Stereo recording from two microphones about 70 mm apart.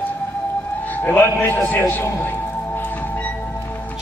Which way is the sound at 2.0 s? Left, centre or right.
Left.